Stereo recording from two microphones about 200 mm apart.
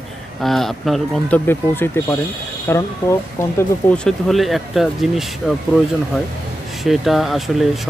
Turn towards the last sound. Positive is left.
turn(degrees=0)  # may be behind; listen again after turning